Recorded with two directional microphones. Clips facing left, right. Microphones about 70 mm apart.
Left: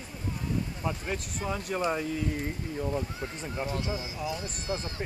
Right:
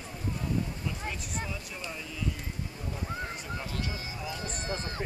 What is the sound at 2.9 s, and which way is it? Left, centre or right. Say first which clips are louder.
Speech: left 3 dB; left.